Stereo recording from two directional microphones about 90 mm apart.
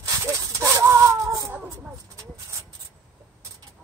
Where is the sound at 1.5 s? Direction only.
20° right (ahead or behind).